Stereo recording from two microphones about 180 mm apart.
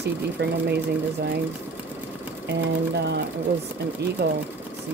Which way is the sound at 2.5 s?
70° right (ahead or behind).